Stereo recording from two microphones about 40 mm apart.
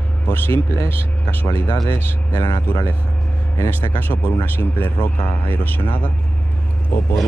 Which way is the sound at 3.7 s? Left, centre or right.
Left.